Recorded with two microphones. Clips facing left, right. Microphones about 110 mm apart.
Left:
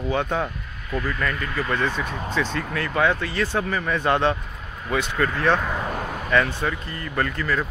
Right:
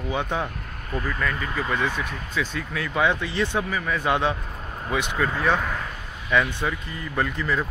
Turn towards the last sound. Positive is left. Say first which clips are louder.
# left 1 dB
turn(degrees=-15)  # may be behind; listen again after turning